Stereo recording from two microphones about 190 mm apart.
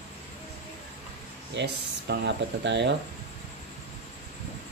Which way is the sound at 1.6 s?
65° right (ahead or behind).